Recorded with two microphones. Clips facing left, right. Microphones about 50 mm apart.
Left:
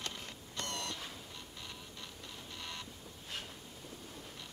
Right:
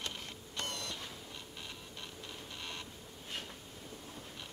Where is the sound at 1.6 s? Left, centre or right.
Right.